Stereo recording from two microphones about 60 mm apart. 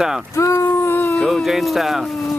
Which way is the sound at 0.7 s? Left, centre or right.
Left.